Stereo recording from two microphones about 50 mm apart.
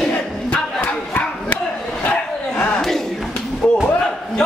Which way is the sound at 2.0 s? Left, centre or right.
Left.